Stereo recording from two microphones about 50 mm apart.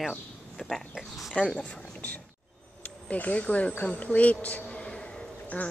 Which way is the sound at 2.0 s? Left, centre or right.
Left.